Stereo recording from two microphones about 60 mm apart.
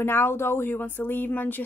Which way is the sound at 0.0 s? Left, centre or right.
Left.